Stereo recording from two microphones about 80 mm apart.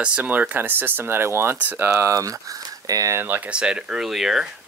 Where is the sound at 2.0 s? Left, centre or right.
Right.